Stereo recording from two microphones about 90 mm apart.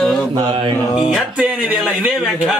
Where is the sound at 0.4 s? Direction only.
60° right (ahead or behind).